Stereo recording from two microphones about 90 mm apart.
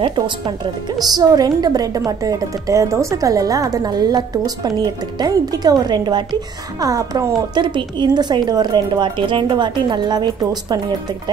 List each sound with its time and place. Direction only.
0.9 s a woman's voice: 45° right (ahead or behind)
6.8 s speech: 40° right (ahead or behind)
7.5 s a woman's voice: 60° right (ahead or behind)